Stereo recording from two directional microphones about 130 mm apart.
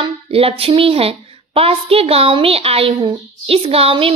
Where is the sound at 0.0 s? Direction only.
45° right (ahead or behind).